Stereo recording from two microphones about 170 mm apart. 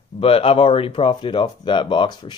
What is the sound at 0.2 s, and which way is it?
Speech, 35° left (ahead or behind).